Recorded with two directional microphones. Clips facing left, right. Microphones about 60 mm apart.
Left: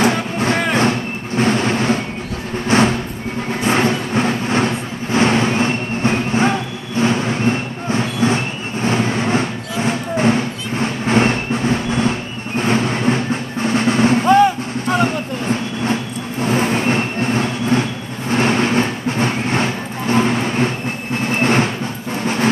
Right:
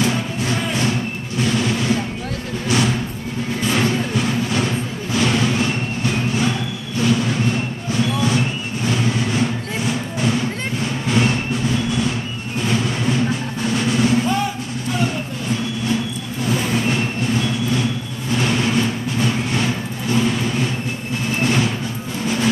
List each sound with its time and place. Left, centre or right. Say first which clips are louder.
0.0 s music: left 4 dB; left
2.7 s vehicle: left 5 dB; left
3.6 s a sound: left 3 dB; left
7.0 s vehicle: left 2 dB; left
12.5 s music: left 4 dB; left
18.3 s vehicle: left 3 dB; left
22.2 s a sound: left 2 dB; left